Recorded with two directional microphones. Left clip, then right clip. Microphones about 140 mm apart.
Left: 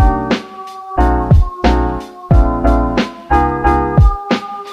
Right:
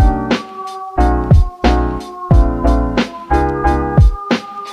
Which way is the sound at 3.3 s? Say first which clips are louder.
Left 3 dB; 15° left (ahead or behind).